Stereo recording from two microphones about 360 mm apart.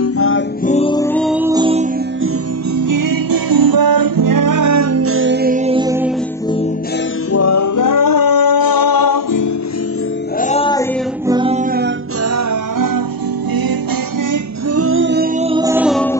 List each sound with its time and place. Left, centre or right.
0.0 s music: left
0.7 s music: centre
2.8 s music: right; by 6.1 s centre
7.3 s singing: left
10.4 s music: centre
11.2 s music: centre
12.4 s music: right
14.8 s music: right
15.4 s music: centre